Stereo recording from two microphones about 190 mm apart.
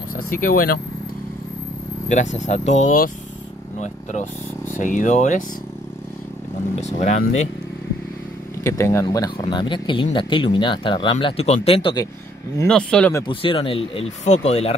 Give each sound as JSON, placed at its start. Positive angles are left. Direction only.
{"t": 0.3, "sound": "speech", "side_deg": 50}
{"t": 2.0, "sound": "speech", "side_deg": 40}
{"t": 6.7, "sound": "speech", "side_deg": 35}
{"t": 8.6, "sound": "speech", "side_deg": 15}
{"t": 12.6, "sound": "speech", "side_deg": 5}
{"t": 13.3, "sound": "speech", "side_deg": 25}